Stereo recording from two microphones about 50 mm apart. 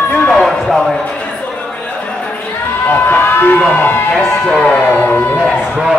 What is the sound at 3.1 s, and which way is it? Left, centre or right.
Speech, left.